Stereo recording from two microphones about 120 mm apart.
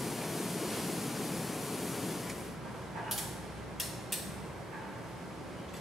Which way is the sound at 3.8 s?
Centre (ahead or behind).